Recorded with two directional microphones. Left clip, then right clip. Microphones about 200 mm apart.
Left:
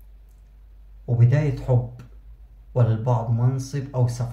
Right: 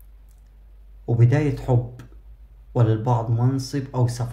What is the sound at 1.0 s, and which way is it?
Speech, 40° right (ahead or behind).